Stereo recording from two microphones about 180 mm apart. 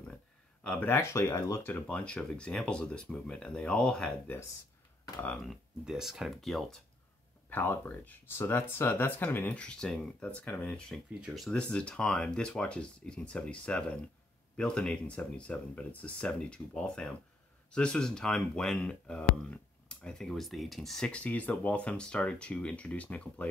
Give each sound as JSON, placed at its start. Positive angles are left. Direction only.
{"t": 0.7, "sound": "speech", "side_deg": 10}
{"t": 7.4, "sound": "speech", "side_deg": 10}